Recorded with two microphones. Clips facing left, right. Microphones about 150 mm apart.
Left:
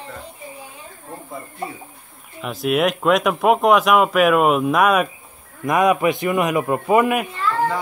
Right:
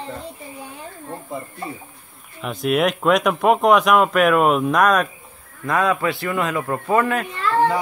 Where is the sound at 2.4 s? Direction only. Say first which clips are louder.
Even; centre (ahead or behind).